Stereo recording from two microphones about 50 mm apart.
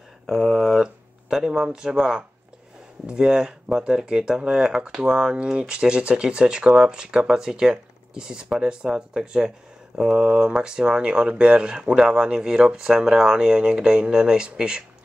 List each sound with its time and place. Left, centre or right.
0.3 s speech: centre
0.7 s speech: centre